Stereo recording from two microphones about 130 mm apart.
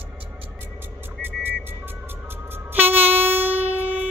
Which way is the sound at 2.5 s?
15° right (ahead or behind).